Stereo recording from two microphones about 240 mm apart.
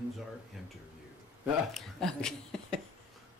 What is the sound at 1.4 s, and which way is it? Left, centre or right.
Speech, centre.